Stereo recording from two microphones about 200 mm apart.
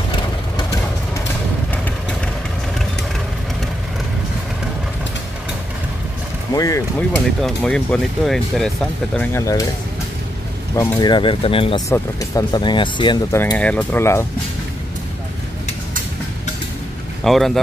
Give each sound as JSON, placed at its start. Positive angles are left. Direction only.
{"t": 6.5, "sound": "speech", "side_deg": 15}
{"t": 7.4, "sound": "speech", "side_deg": 5}
{"t": 10.8, "sound": "speech", "side_deg": 20}
{"t": 11.9, "sound": "speech", "side_deg": 15}
{"t": 13.4, "sound": "speech", "side_deg": 10}
{"t": 17.2, "sound": "speech", "side_deg": 0}